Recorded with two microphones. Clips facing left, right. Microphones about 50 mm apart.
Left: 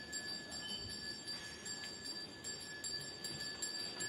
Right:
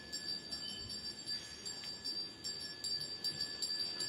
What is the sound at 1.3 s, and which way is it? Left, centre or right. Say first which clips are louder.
Train: right 1 dB; centre.